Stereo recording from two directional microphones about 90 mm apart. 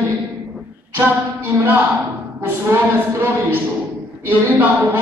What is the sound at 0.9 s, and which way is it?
A woman's voice, 20° right (ahead or behind).